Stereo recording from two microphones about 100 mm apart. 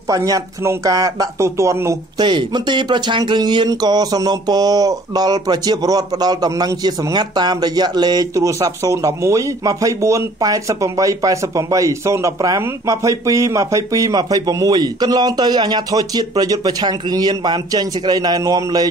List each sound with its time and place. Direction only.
0.1 s speech: 35° right (ahead or behind)
2.1 s speech: 50° right (ahead or behind)